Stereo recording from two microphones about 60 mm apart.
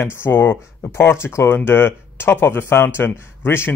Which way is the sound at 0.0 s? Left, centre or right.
Left.